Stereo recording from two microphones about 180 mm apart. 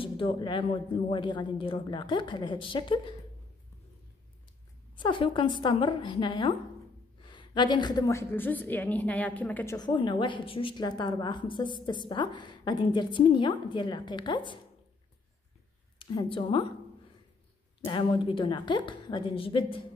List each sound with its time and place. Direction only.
0.0 s a woman's voice: 30° left (ahead or behind)
4.9 s a woman's voice: 25° left (ahead or behind); by 9.8 s 10° left (ahead or behind)
9.8 s a woman's voice: 25° left (ahead or behind)
16.0 s a woman's voice: 25° left (ahead or behind)
17.8 s a woman's voice: 25° left (ahead or behind)